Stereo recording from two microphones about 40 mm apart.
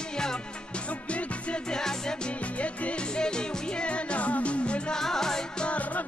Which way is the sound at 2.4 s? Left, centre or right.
Left.